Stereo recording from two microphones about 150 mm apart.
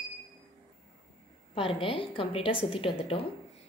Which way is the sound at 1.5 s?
35° left (ahead or behind).